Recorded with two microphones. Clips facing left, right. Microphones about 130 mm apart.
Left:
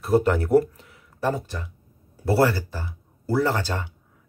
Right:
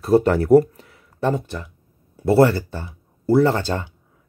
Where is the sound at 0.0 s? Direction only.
30° right (ahead or behind).